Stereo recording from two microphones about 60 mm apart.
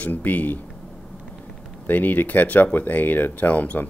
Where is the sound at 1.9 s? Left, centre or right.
Left.